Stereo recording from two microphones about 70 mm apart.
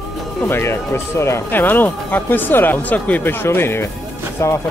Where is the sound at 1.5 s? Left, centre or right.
Left.